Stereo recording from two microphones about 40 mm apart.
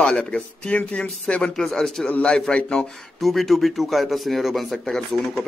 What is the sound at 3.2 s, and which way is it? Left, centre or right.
A man's voice, centre.